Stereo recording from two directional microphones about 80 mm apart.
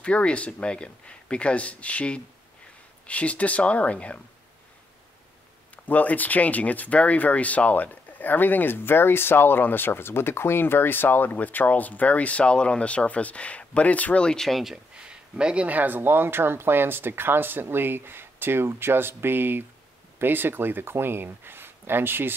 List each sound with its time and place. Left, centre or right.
0.0 s speech: centre
5.9 s speech: left; by 22.3 s right